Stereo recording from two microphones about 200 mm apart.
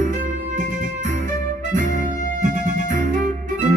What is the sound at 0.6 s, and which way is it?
Music, 40° right (ahead or behind).